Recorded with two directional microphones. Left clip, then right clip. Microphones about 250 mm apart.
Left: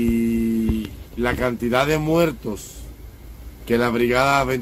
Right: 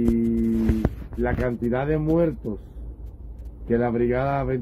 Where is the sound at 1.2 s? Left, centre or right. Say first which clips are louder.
Left 3 dB; centre.